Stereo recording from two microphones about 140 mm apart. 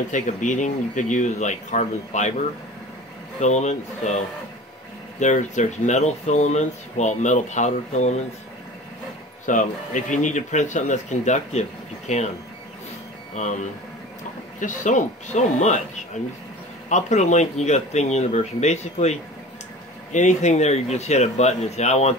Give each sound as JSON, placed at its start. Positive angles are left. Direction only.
{"t": 0.1, "sound": "speech", "side_deg": 60}
{"t": 3.3, "sound": "speech", "side_deg": 55}
{"t": 5.2, "sound": "speech", "side_deg": 60}
{"t": 9.5, "sound": "speech", "side_deg": 65}
{"t": 13.3, "sound": "speech", "side_deg": 60}
{"t": 14.6, "sound": "speech", "side_deg": 65}
{"t": 16.9, "sound": "speech", "side_deg": 55}